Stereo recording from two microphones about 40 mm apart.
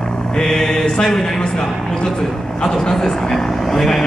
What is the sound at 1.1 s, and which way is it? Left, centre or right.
Speech, centre.